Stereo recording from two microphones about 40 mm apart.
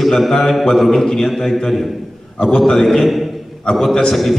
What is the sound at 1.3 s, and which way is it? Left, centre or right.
A man's voice, centre.